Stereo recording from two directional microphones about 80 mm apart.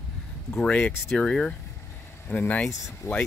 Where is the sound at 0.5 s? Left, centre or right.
Centre.